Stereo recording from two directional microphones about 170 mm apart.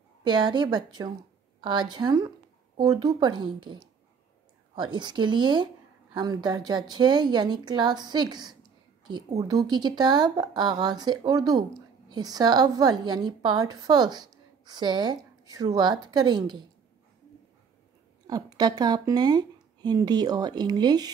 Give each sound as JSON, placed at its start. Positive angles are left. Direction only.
{"t": 0.2, "sound": "a woman's voice", "side_deg": -25}
{"t": 18.2, "sound": "a woman's voice", "side_deg": -25}